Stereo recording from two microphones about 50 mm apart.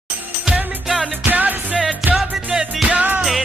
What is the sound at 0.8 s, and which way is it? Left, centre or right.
Music, centre.